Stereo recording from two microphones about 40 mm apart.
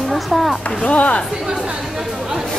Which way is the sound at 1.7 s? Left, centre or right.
Centre.